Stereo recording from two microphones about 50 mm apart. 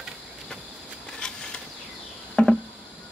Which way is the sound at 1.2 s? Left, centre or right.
Centre.